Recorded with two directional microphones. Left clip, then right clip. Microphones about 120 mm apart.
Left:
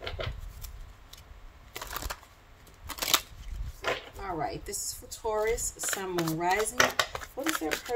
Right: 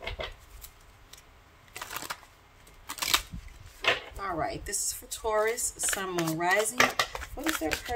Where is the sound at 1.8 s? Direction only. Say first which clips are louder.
Even; 15° left (ahead or behind).